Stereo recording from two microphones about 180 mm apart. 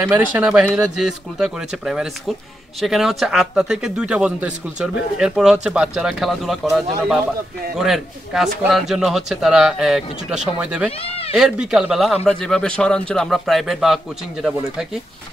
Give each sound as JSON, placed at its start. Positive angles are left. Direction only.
{"t": 0.0, "sound": "a man's voice", "side_deg": -5}
{"t": 10.9, "sound": "speech", "side_deg": 30}
{"t": 11.3, "sound": "a man's voice", "side_deg": -5}